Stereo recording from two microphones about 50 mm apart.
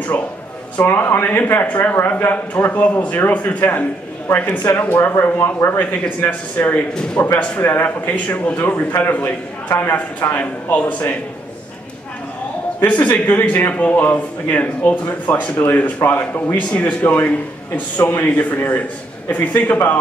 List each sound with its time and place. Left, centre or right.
0.8 s a man's voice: left
2.8 s a man's voice: left
7.2 s a man's voice: left
8.0 s a man's voice: left
12.8 s a man's voice: left
13.7 s a man's voice: left